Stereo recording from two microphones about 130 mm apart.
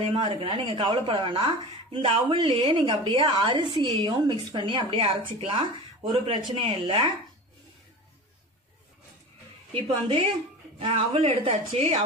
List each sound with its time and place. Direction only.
0.1 s speech: 40° right (ahead or behind)
9.7 s a woman's voice: 40° right (ahead or behind)